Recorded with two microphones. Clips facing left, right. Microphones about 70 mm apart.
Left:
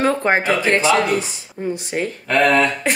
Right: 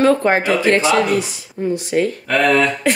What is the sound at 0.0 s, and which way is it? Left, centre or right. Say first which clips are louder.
Speech: right 3 dB; left.